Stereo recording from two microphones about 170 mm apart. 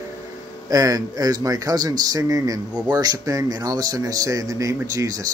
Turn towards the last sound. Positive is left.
turn(degrees=-20)  # may be behind; listen again after turning